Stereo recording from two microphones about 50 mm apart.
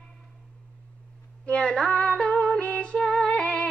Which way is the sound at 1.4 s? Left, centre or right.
Left.